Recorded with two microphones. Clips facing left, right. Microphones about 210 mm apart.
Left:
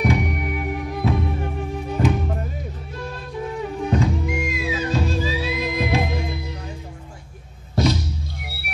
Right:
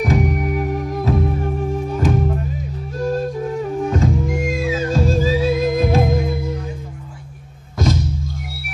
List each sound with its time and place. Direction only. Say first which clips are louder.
0.0 s music: right 3 dB; 45° right (ahead or behind)
7.7 s music: even; 45° right (ahead or behind)